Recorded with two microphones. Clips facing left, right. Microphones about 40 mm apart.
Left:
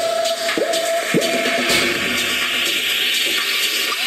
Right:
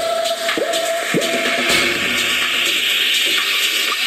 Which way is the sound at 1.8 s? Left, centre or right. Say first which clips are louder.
Right 1 dB; right.